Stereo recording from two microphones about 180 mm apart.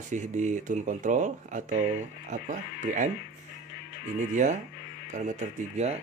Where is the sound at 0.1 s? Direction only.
45° right (ahead or behind).